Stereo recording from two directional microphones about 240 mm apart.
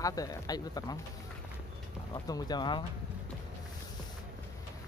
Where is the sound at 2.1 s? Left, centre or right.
Centre.